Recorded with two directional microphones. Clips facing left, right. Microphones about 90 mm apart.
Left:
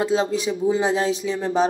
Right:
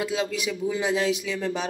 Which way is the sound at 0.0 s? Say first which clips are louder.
Left 6 dB; 35° left (ahead or behind).